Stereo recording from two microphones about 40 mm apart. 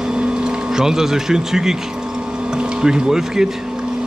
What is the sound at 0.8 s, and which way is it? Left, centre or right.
Speech, centre.